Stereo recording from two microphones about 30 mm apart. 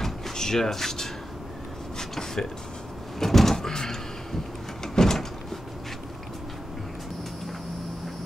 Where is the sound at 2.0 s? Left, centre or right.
Centre.